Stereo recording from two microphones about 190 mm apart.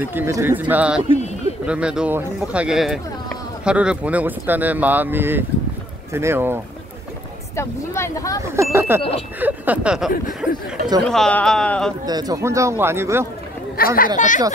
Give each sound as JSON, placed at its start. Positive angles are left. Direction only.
{"t": 0.0, "sound": "speech", "side_deg": -10}
{"t": 7.5, "sound": "speech", "side_deg": 15}
{"t": 8.5, "sound": "speech", "side_deg": -15}
{"t": 12.1, "sound": "speech", "side_deg": -20}
{"t": 13.7, "sound": "speech", "side_deg": 50}